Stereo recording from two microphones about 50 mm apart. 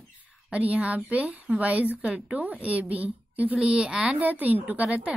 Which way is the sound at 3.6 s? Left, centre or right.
Centre.